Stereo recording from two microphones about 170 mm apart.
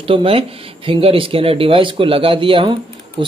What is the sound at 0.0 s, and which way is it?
Speech, 35° right (ahead or behind).